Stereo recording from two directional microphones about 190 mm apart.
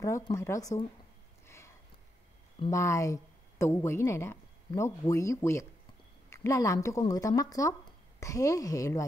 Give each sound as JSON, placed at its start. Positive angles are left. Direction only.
{"t": 0.0, "sound": "speech", "side_deg": 15}
{"t": 2.7, "sound": "speech", "side_deg": 15}